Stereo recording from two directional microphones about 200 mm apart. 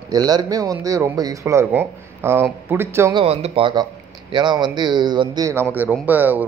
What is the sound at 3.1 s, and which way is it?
A man's voice, 30° right (ahead or behind).